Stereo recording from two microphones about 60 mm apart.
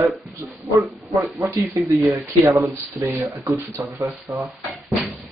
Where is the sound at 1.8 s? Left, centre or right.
Right.